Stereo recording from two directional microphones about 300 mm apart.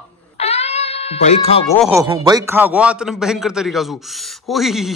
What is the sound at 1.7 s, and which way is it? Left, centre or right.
Speech, centre.